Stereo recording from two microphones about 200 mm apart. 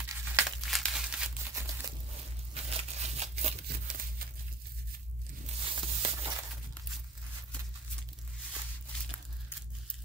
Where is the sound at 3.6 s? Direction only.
45° right (ahead or behind).